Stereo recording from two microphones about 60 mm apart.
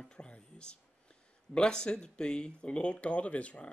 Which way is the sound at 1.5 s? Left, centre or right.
Centre.